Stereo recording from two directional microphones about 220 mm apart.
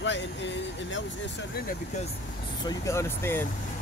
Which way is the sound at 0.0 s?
55° left (ahead or behind).